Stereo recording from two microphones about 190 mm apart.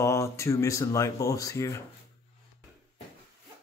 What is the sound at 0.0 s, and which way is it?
Speech, 15° left (ahead or behind).